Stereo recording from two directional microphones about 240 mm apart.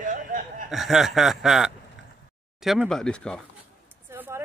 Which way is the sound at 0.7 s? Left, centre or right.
Centre.